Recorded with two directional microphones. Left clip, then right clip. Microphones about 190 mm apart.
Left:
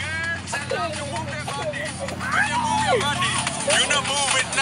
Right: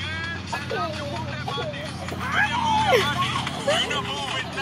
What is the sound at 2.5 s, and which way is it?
Vehicle, 50° left (ahead or behind).